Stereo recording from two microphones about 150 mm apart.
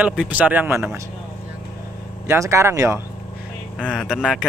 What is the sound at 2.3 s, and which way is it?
Speech, 20° right (ahead or behind).